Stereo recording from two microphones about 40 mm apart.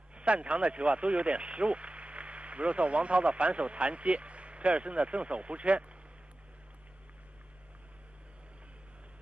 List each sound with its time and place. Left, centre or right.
0.1 s speech: right